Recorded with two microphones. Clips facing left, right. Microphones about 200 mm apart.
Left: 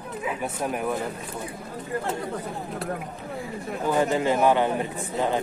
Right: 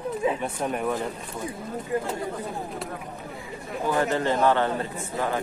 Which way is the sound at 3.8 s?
15° left (ahead or behind).